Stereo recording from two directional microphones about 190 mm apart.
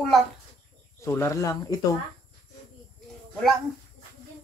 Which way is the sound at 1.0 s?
15° left (ahead or behind).